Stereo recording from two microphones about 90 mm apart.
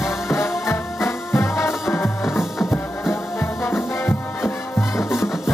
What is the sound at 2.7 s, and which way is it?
Music, 30° left (ahead or behind).